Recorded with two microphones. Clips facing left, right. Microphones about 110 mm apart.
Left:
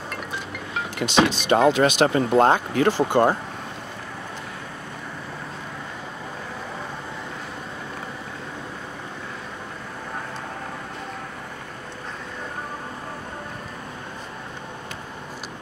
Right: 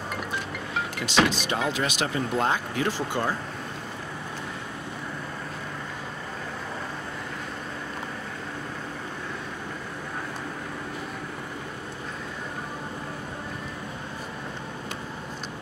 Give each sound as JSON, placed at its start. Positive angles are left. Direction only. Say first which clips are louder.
{"t": 1.0, "sound": "speech", "louder": "left 4 dB", "side_deg": 20}
{"t": 1.5, "sound": "speech", "louder": "left 10 dB", "side_deg": 55}